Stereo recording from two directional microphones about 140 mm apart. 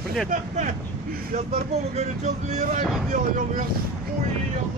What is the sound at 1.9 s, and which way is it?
Speech, 55° right (ahead or behind).